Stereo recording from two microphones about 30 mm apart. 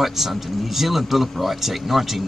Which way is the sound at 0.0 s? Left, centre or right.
Centre.